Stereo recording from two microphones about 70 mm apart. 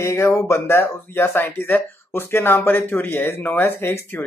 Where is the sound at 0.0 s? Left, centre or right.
Left.